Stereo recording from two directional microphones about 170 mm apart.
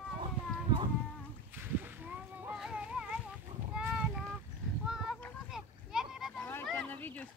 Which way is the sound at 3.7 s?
5° right (ahead or behind).